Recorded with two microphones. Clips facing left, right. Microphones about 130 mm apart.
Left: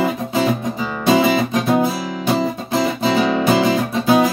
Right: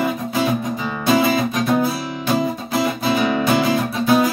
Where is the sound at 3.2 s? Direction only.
20° left (ahead or behind).